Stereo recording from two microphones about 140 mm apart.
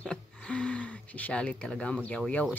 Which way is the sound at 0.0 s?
10° left (ahead or behind).